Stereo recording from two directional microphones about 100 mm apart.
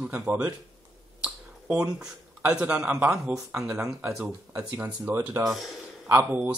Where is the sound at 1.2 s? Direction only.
10° right (ahead or behind).